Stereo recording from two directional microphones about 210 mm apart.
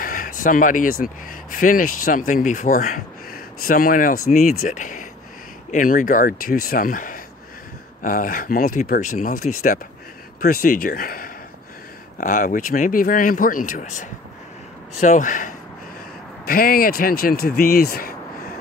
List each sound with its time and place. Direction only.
0.0 s speech: 40° left (ahead or behind)